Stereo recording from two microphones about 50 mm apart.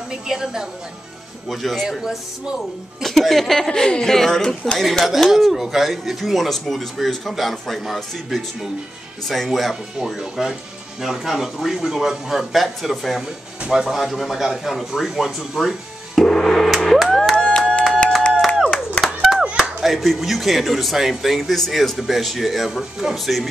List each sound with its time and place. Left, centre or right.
0.1 s speech: centre
1.5 s speech: centre
3.0 s speech: centre
13.9 s speech: centre
16.2 s gong: centre
17.4 s music: centre
19.0 s a sound: centre
19.5 s speech: centre